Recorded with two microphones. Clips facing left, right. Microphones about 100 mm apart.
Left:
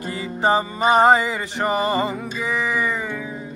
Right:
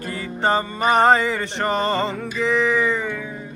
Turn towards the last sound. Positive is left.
turn(degrees=10)  # may be behind; listen again after turning